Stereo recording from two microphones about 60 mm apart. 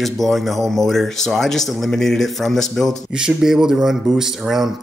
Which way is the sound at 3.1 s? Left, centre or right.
Centre.